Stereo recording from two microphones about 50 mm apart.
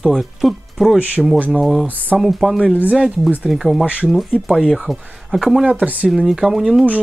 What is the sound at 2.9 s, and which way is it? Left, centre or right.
Speech, right.